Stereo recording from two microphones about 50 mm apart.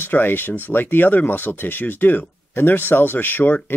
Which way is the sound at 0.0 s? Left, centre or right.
Left.